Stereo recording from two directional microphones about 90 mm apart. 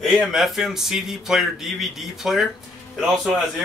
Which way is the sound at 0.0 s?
Centre (ahead or behind).